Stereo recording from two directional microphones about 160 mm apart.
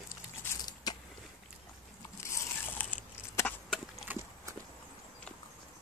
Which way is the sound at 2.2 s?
15° left (ahead or behind).